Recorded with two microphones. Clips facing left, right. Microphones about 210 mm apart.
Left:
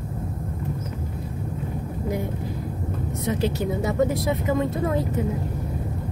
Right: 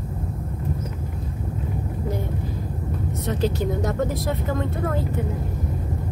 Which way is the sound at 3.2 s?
10° left (ahead or behind).